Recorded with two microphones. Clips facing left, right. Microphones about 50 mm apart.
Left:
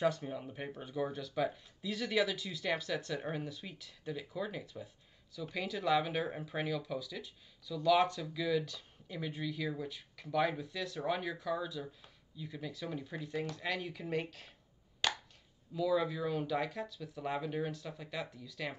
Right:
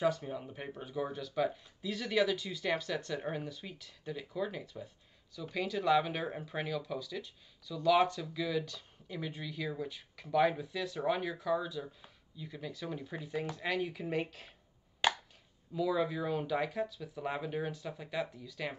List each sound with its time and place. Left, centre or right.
0.0 s speech: centre
15.0 s a sound: centre
15.7 s speech: centre